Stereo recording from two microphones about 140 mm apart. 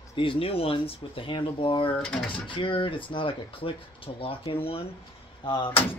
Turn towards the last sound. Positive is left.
turn(degrees=40)  # may be behind; listen again after turning